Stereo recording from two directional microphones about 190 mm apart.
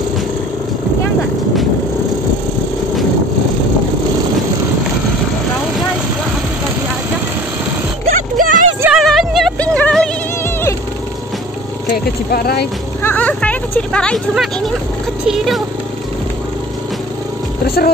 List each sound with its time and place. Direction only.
8.1 s a sound: 45° right (ahead or behind)
8.8 s music: centre (ahead or behind)
11.9 s speech: 50° left (ahead or behind)
13.0 s a sound: 10° left (ahead or behind)
15.2 s speech: centre (ahead or behind)
17.6 s speech: 55° left (ahead or behind)